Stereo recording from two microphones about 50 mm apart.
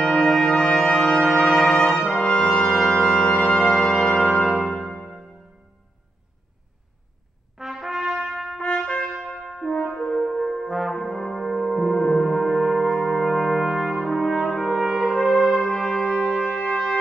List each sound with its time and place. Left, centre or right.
0.3 s brass instrument: centre
4.2 s church bell: centre
7.5 s brass instrument: centre
8.7 s trumpet: left
9.2 s brass instrument: centre
16.2 s trumpet: centre